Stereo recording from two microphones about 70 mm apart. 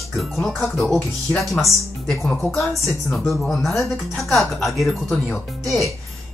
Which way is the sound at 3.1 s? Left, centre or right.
Centre.